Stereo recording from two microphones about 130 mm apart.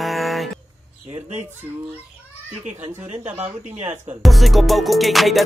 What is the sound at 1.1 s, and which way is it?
Speech, 60° right (ahead or behind).